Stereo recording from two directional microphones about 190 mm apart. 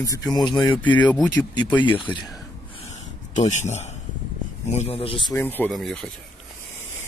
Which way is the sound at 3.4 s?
40° left (ahead or behind).